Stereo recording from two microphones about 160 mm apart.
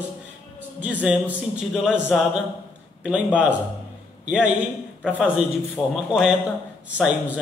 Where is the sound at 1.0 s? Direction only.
5° right (ahead or behind).